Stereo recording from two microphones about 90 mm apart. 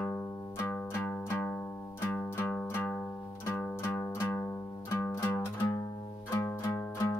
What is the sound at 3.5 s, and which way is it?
Music, 15° left (ahead or behind).